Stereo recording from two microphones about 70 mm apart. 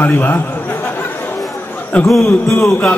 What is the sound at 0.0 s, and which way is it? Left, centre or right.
Speech, left.